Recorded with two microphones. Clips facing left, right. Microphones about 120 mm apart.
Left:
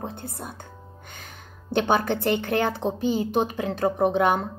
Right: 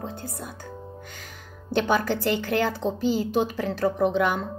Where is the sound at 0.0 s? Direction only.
25° left (ahead or behind).